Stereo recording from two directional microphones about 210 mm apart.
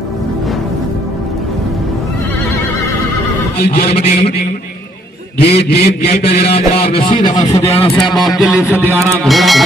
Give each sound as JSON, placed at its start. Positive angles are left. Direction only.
{"t": 3.5, "sound": "a man's voice", "side_deg": 50}
{"t": 5.4, "sound": "a man's voice", "side_deg": 50}
{"t": 7.2, "sound": "a man's voice", "side_deg": 20}
{"t": 8.0, "sound": "music", "side_deg": 0}
{"t": 8.6, "sound": "a man's voice", "side_deg": 10}
{"t": 9.2, "sound": "music", "side_deg": 0}